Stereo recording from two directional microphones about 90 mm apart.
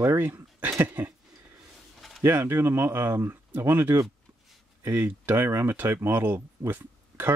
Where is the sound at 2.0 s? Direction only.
Centre (ahead or behind).